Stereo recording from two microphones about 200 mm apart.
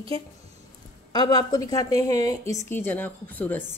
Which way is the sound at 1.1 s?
20° left (ahead or behind).